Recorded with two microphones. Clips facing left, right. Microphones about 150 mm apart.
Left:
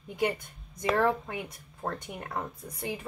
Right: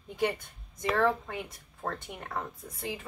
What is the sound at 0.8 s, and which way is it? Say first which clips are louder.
Speech: left 1 dB; 15° left (ahead or behind).